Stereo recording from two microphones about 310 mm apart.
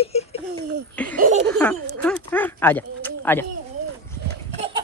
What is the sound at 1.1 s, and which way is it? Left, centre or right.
Laughter, right.